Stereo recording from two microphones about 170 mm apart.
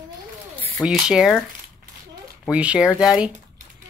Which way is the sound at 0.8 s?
5° right (ahead or behind).